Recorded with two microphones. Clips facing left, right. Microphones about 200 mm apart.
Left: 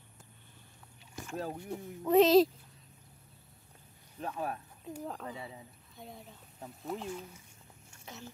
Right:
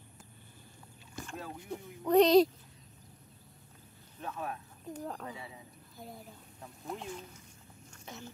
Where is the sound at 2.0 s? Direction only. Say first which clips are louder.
Even; centre (ahead or behind).